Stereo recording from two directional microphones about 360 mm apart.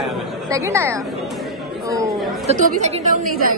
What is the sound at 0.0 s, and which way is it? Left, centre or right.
Chatter, centre.